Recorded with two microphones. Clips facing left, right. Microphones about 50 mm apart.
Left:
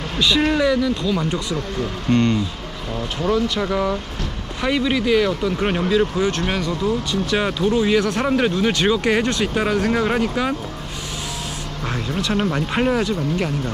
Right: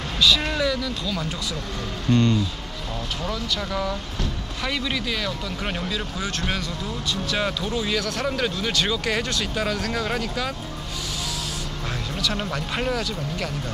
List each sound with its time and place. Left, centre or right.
0.2 s speech: centre
3.2 s speech: left
11.9 s speech: left